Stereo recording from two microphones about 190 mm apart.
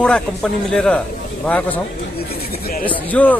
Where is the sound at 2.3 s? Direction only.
50° left (ahead or behind).